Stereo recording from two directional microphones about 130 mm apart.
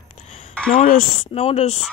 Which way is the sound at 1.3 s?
50° left (ahead or behind).